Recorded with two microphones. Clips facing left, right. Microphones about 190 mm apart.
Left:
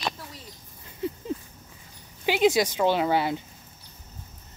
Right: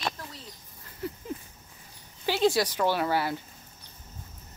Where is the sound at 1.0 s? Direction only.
20° left (ahead or behind).